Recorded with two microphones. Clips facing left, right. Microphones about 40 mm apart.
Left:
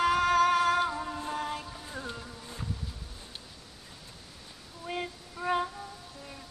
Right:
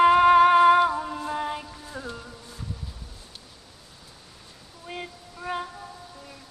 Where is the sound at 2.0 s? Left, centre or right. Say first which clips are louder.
Right 3 dB; centre.